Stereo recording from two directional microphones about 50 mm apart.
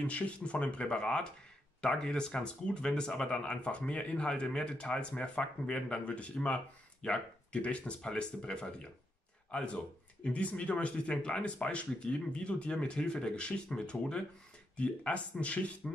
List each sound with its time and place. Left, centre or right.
0.0 s speech: left